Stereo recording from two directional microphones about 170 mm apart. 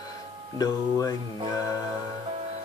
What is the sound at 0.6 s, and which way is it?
Music, 20° left (ahead or behind).